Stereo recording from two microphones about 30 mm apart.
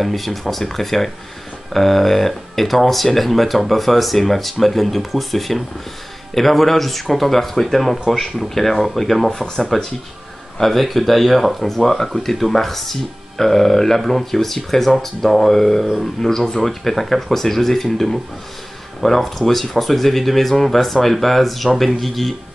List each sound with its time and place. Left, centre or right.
0.0 s speech: centre